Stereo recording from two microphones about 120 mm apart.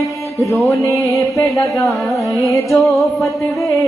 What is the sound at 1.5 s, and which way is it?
Chant, 25° left (ahead or behind).